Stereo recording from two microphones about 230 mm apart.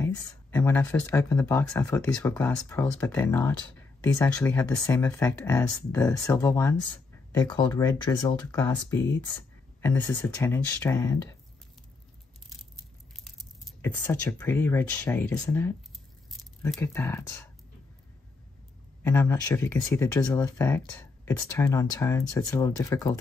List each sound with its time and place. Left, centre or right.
0.0 s speech: centre
13.2 s speech: centre
19.0 s speech: centre